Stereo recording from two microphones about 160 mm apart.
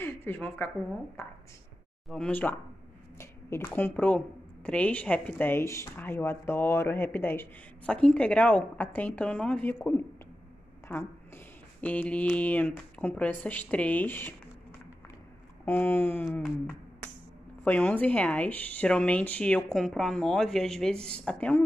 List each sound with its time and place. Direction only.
0.0 s speech: 10° left (ahead or behind)
2.0 s speech: 5° left (ahead or behind)
11.8 s speech: 10° left (ahead or behind)
15.6 s speech: 15° left (ahead or behind)